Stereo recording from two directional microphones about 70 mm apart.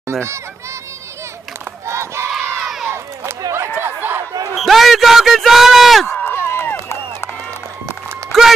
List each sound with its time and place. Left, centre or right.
0.0 s a child's voice: right
1.9 s crowd: right
2.6 s crowd: centre
3.5 s a sound: right
4.6 s a sound: centre
6.2 s run: left
8.3 s run: centre